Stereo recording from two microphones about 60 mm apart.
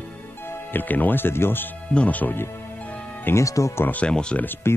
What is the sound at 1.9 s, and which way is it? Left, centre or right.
Speech, left.